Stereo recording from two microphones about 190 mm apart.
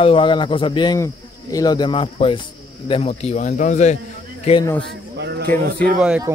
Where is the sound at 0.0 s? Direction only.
25° left (ahead or behind).